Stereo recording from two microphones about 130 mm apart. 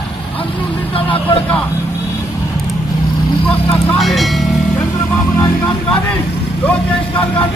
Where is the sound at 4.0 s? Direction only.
Centre (ahead or behind).